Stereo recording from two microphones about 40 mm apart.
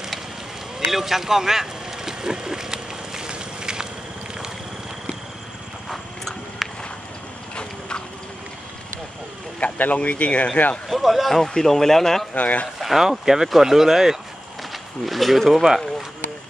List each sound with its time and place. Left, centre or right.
0.9 s a sound: centre
5.9 s horse: centre
9.6 s speech: left
10.9 s speech: centre
12.4 s speech: left
12.8 s speech: centre